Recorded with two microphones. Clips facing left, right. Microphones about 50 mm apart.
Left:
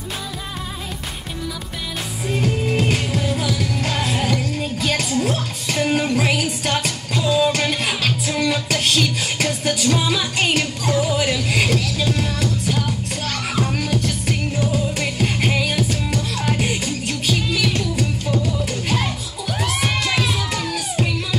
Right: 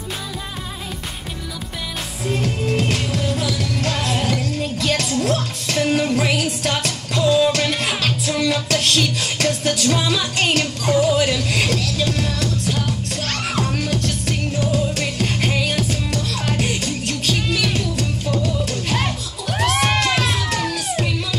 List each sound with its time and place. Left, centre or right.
2.6 s music: centre
18.9 s music: right
19.6 s music: right
20.4 s music: centre